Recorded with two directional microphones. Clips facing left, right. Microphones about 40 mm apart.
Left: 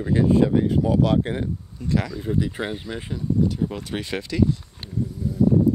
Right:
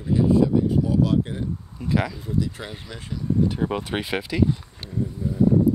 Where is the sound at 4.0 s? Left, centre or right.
Centre.